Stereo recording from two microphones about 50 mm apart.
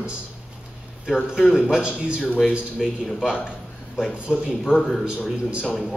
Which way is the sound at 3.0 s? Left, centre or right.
Centre.